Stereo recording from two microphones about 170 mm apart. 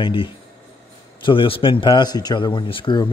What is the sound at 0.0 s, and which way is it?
Speech, 30° left (ahead or behind).